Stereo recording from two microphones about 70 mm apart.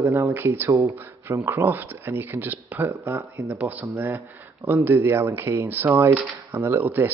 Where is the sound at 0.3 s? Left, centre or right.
Right.